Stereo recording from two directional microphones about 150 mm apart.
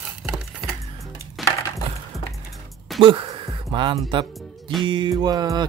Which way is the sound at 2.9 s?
35° right (ahead or behind).